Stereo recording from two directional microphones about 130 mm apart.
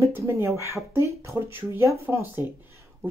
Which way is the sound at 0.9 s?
20° right (ahead or behind).